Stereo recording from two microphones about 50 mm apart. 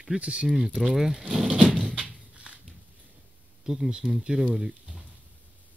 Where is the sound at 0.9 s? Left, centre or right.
Centre.